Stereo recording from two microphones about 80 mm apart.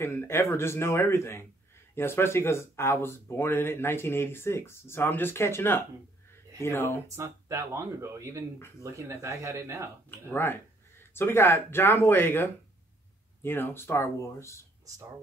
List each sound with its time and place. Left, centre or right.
0.0 s speech: left
7.2 s speech: right
10.0 s speech: left